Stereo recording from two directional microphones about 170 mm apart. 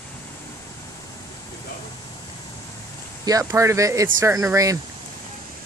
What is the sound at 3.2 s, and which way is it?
Speech, 20° right (ahead or behind).